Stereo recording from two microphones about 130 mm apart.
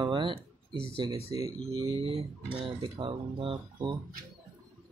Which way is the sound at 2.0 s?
45° right (ahead or behind).